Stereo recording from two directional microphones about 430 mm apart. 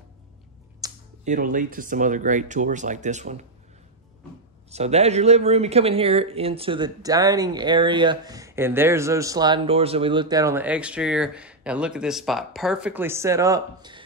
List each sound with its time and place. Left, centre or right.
0.7 s speech: centre
4.6 s speech: centre